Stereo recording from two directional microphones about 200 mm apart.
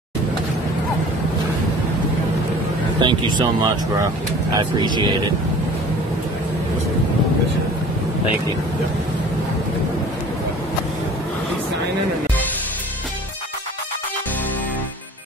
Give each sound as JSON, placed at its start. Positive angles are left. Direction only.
{"t": 3.0, "sound": "speech", "side_deg": -25}